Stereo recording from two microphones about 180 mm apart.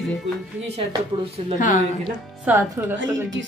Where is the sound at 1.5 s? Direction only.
45° left (ahead or behind).